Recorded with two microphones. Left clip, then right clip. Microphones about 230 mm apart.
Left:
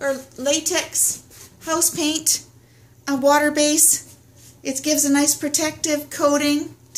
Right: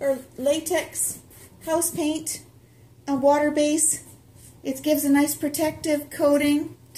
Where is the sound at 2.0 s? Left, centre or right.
Left.